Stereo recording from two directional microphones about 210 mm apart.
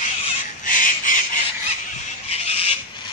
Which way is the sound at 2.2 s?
30° left (ahead or behind).